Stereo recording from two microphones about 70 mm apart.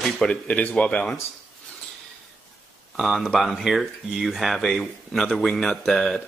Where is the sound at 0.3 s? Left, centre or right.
Centre.